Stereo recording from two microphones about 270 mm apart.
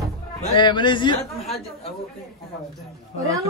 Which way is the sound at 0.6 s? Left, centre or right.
Centre.